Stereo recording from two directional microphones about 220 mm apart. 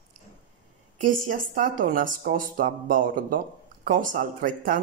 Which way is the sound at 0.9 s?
40° right (ahead or behind).